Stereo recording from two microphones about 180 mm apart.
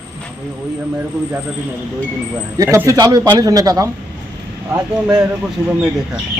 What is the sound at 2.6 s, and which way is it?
A man's voice, 15° right (ahead or behind).